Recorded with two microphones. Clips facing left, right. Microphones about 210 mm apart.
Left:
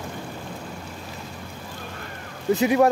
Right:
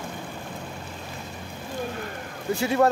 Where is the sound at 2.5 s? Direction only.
15° left (ahead or behind).